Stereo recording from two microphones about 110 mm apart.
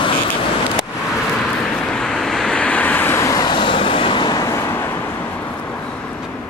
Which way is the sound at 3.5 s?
50° left (ahead or behind).